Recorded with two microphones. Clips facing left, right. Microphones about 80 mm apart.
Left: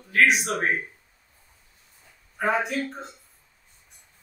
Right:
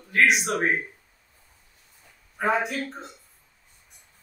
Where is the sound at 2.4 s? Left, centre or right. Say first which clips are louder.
Even; centre.